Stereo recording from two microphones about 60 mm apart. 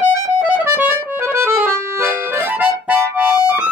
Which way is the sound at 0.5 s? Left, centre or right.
Right.